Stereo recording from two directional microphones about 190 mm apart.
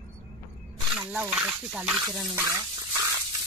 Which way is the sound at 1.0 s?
5° right (ahead or behind).